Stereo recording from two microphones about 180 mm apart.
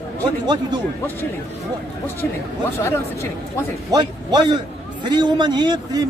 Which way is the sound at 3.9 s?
25° right (ahead or behind).